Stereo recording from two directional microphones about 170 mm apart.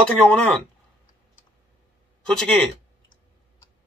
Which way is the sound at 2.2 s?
5° left (ahead or behind).